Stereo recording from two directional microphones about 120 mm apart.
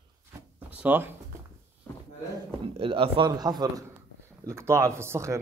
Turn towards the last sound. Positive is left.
turn(degrees=-25)  # may be behind; listen again after turning